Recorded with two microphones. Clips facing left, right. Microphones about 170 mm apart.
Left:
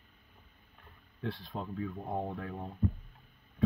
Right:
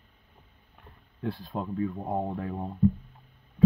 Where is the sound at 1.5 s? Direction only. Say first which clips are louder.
Right 7 dB; 60° right (ahead or behind).